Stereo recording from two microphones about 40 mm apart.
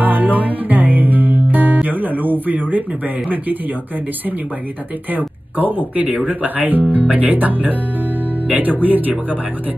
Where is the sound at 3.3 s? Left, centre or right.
Right.